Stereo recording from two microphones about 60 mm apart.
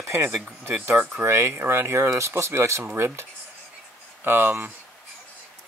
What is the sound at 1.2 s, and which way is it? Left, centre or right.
Speech, right.